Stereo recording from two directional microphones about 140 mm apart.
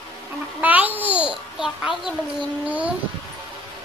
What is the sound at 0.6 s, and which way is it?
Babbling, 10° right (ahead or behind).